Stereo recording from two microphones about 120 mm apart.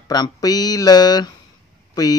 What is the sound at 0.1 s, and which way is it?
A man's voice, 35° left (ahead or behind).